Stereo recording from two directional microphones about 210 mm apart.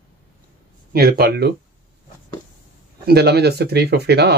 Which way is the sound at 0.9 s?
50° right (ahead or behind).